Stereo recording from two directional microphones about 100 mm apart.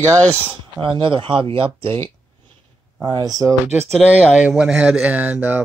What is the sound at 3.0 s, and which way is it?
Speech, 40° right (ahead or behind).